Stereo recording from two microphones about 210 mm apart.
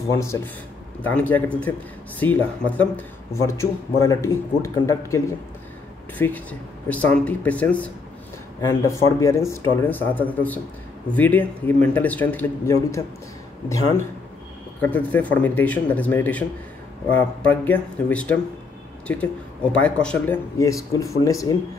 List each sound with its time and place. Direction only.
0.1 s a man's voice: 15° left (ahead or behind)